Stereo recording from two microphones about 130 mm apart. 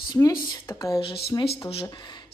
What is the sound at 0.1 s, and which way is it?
Speech, 30° left (ahead or behind).